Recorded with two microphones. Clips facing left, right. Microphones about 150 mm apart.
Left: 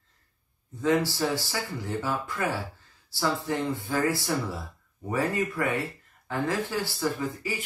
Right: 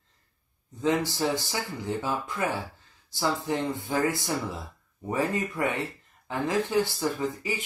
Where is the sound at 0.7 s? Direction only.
20° right (ahead or behind).